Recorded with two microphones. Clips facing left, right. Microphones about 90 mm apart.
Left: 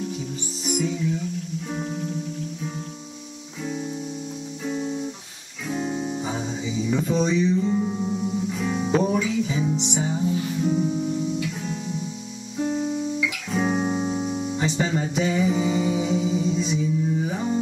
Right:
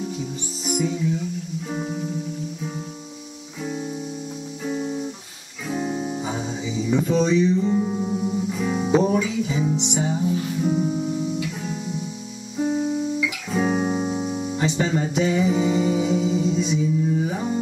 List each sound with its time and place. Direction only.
0.7 s music: 5° right (ahead or behind)
4.6 s music: 10° right (ahead or behind)
12.5 s guitar: 5° right (ahead or behind)